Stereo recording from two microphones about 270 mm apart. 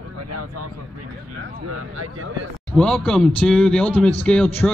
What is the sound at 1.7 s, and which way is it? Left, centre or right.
Speech, right.